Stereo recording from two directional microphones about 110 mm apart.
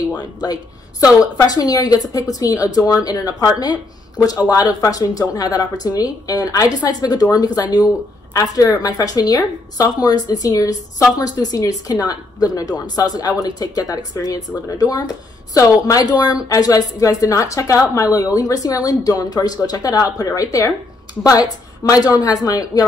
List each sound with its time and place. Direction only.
1.4 s a woman's voice: 35° left (ahead or behind)